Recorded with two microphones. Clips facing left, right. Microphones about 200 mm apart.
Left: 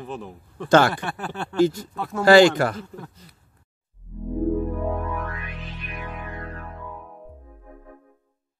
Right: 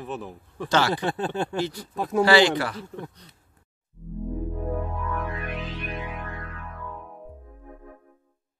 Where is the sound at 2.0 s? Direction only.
15° right (ahead or behind).